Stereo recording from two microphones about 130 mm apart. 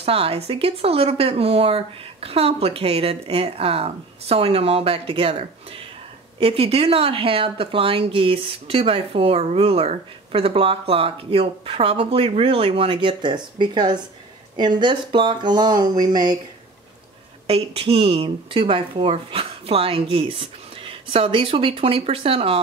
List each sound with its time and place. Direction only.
0.0 s speech: 50° right (ahead or behind)
6.4 s speech: 50° right (ahead or behind); by 16.3 s 30° right (ahead or behind)
17.5 s speech: 50° right (ahead or behind)